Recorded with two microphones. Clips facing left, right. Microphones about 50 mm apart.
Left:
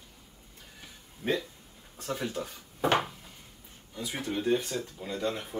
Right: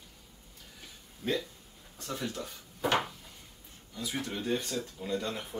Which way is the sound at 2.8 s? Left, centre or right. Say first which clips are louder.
Left 3 dB; left.